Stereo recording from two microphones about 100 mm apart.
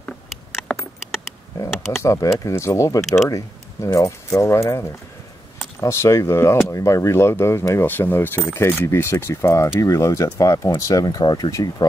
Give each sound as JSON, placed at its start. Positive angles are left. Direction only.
{"t": 1.7, "sound": "mechanisms", "side_deg": 0}
{"t": 2.0, "sound": "speech", "side_deg": 30}